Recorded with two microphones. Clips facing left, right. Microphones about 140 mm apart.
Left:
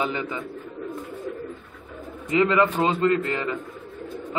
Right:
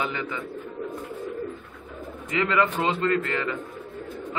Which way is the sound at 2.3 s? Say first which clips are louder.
Left 4 dB; 25° left (ahead or behind).